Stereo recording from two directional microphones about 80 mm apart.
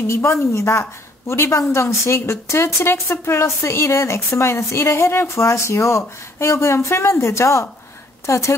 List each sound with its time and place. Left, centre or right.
0.0 s a woman's voice: left